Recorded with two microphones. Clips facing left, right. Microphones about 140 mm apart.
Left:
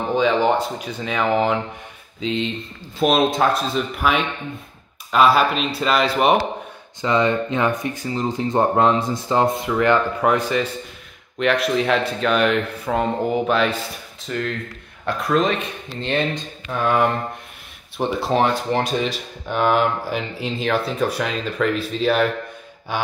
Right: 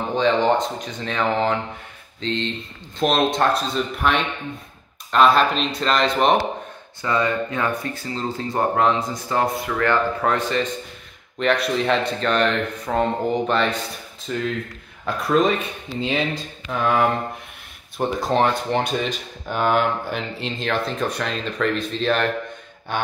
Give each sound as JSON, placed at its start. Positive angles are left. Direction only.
{"t": 0.1, "sound": "speech", "side_deg": 10}
{"t": 7.0, "sound": "speech", "side_deg": 20}